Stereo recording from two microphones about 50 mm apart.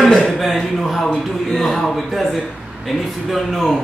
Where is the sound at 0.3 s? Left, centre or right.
Centre.